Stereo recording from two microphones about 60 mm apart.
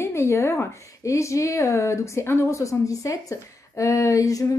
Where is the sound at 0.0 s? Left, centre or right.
Left.